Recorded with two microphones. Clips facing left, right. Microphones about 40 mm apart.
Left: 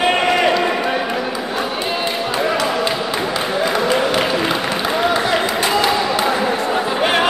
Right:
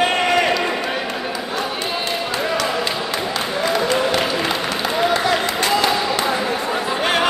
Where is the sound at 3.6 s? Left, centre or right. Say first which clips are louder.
Left 1 dB; centre.